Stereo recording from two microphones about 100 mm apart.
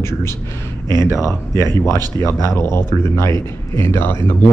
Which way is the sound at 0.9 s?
45° right (ahead or behind).